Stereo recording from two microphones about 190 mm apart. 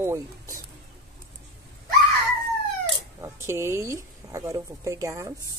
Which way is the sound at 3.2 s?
15° right (ahead or behind).